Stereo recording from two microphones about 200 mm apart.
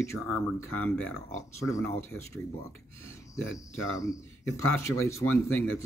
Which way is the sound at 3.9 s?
15° left (ahead or behind).